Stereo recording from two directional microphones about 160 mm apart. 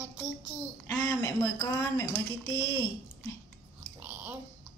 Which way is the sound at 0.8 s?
15° left (ahead or behind).